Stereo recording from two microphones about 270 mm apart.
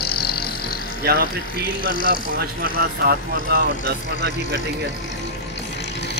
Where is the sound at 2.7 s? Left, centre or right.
Right.